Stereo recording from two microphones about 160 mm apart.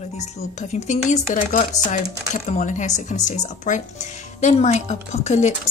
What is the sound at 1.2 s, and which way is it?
Speech, 60° left (ahead or behind).